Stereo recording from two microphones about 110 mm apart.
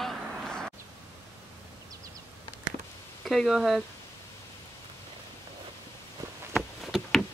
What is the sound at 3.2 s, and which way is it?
Speech, centre (ahead or behind).